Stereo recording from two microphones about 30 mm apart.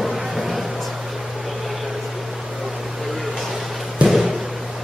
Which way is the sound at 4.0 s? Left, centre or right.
Right.